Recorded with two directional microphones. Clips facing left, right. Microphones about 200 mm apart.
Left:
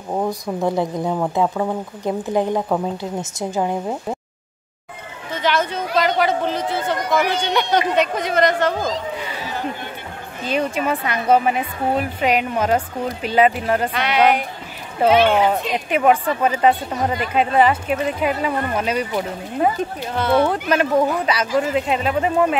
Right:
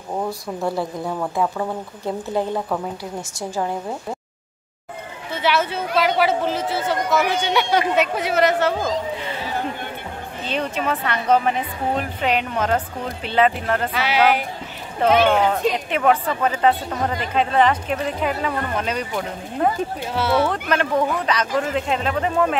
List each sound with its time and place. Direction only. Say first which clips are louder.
0.2 s speech: left 4 dB; 15° left (ahead or behind)
5.3 s a woman's voice: even; 5° right (ahead or behind)
10.4 s speech: left 3 dB; 10° left (ahead or behind)
13.9 s a woman's voice: even; 5° right (ahead or behind)
15.0 s speech: left 2 dB; 10° left (ahead or behind)
20.1 s a woman's voice: left 3 dB; 5° right (ahead or behind)
20.4 s speech: left 3 dB; 10° left (ahead or behind)